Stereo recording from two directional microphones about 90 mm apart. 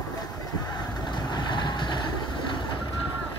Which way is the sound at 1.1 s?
55° left (ahead or behind).